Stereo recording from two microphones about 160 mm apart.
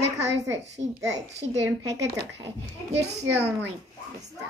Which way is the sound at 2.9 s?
90° right.